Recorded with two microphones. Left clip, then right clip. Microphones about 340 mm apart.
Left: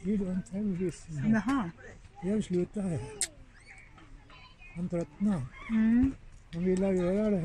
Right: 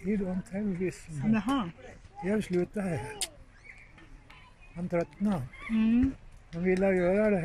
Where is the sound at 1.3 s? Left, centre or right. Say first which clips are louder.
Even; centre.